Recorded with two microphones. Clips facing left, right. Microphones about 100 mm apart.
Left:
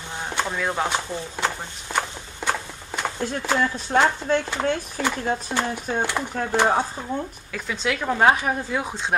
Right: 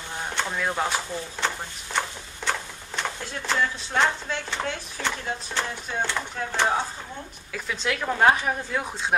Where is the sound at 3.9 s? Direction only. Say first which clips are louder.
Left 5 dB; 45° left (ahead or behind).